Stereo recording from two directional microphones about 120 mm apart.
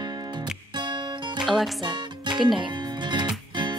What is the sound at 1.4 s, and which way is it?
Music, centre (ahead or behind).